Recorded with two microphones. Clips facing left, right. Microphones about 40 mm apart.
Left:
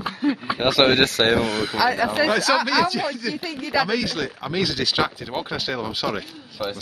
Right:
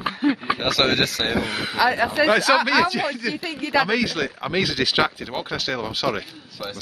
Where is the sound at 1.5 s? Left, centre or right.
Right.